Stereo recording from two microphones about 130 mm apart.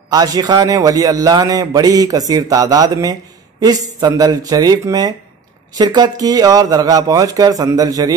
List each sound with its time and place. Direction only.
0.1 s a man's voice: 30° right (ahead or behind)